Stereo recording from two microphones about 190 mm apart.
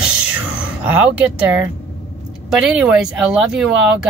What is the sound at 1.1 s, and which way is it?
Speech, 10° right (ahead or behind).